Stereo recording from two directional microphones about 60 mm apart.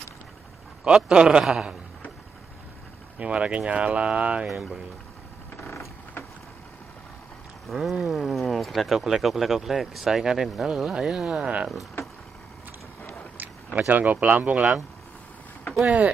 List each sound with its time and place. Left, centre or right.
0.9 s a man's voice: centre
3.2 s speech: centre
4.5 s speech: centre
5.6 s vehicle: left
7.6 s speech: centre
13.7 s speech: right
15.8 s speech: right